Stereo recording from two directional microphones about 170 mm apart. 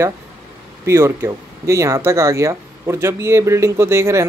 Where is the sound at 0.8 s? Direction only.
15° right (ahead or behind).